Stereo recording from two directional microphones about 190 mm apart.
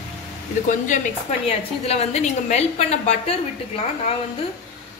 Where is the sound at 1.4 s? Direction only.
35° left (ahead or behind).